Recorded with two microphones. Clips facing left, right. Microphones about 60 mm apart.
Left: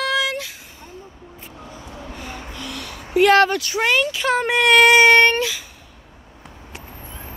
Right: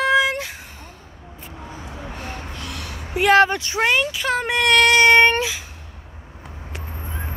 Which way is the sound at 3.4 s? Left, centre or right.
Right.